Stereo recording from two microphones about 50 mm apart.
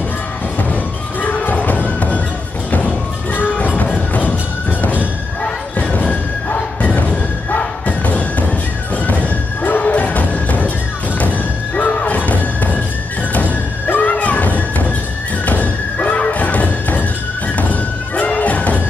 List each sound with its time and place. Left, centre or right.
1.2 s music: left
3.5 s a sound: left
4.3 s music: left
5.4 s thump: left
8.9 s music: left
11.7 s music: left